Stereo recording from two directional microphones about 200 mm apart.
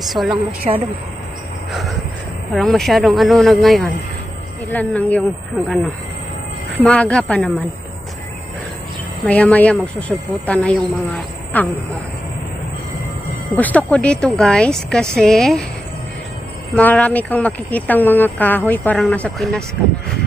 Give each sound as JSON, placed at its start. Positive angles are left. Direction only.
{"t": 0.0, "sound": "a woman's voice", "side_deg": 0}
{"t": 0.7, "sound": "speech", "side_deg": -30}
{"t": 1.7, "sound": "vehicle", "side_deg": 0}
{"t": 2.5, "sound": "a woman's voice", "side_deg": 0}
{"t": 6.8, "sound": "speech", "side_deg": 5}
{"t": 9.2, "sound": "speech", "side_deg": 5}
{"t": 13.6, "sound": "a woman's voice", "side_deg": 5}
{"t": 16.7, "sound": "speech", "side_deg": 5}